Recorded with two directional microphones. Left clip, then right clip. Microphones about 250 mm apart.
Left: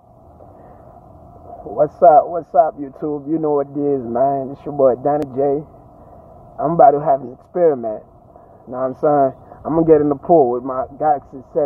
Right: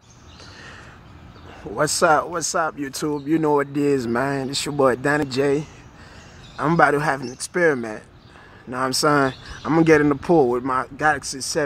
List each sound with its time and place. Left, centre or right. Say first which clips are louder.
1.8 s a man's voice: left 7 dB; right